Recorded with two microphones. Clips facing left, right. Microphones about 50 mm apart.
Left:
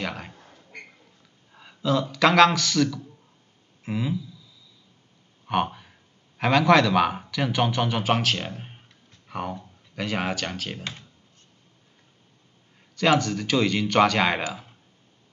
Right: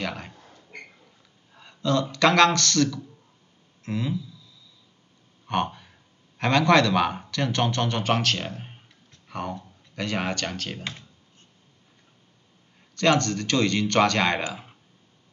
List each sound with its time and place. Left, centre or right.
0.0 s a sound: centre
2.1 s speech: centre
5.5 s a man's voice: centre
12.9 s speech: centre